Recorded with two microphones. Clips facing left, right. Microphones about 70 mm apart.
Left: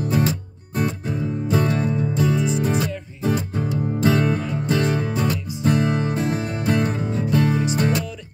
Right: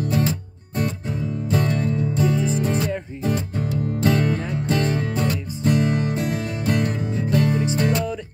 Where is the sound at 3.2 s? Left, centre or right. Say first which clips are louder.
Left 3 dB; centre.